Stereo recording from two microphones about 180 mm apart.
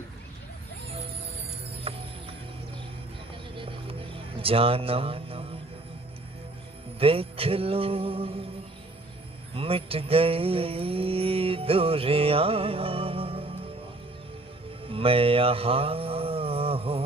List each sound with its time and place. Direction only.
1.9 s music: 30° right (ahead or behind)
3.5 s music: 30° right (ahead or behind)
7.0 s mantra: 30° right (ahead or behind)
9.5 s mantra: 30° right (ahead or behind)
14.9 s a sound: 30° right (ahead or behind)